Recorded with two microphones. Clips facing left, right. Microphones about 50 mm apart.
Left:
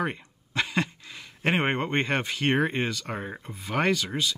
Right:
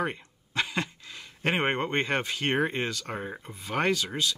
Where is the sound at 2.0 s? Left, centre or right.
Centre.